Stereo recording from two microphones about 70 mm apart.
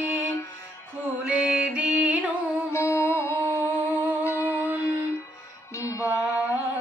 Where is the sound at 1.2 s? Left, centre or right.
Centre.